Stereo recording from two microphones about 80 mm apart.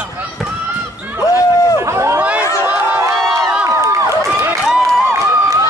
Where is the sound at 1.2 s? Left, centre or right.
Left.